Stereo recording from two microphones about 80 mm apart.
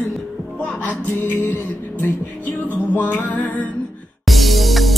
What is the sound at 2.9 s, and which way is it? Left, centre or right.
Music, centre.